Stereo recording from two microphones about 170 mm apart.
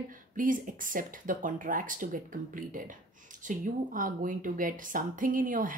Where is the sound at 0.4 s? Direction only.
50° right (ahead or behind).